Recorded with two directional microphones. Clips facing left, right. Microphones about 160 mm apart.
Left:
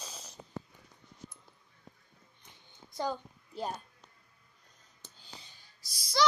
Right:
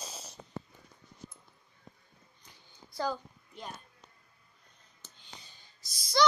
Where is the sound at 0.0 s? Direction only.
40° right (ahead or behind).